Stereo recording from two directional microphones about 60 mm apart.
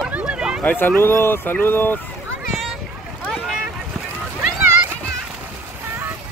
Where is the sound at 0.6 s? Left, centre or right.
Left.